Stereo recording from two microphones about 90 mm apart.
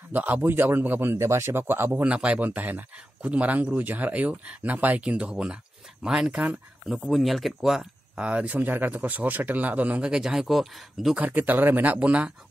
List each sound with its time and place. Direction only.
0.1 s a man's voice: 20° right (ahead or behind)
2.0 s speech: 15° right (ahead or behind)
11.1 s a man's voice: 20° right (ahead or behind)